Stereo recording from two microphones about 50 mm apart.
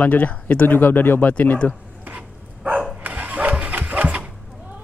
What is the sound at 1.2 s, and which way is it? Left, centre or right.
Speech, left.